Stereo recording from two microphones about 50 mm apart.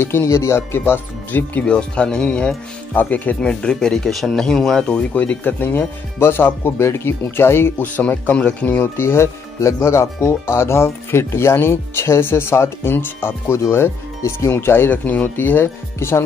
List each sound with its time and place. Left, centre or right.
0.0 s speech: left
1.3 s speech: left
1.7 s speech: centre
2.9 s speech: left
3.3 s speech: centre
4.8 s speech: left
7.8 s speech: left
8.8 s speech: left
12.9 s speech: left
13.7 s speech: left
15.0 s speech: left
15.6 s speech: left